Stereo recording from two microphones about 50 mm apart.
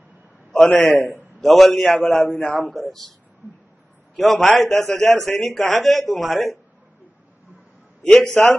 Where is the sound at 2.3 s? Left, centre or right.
Left.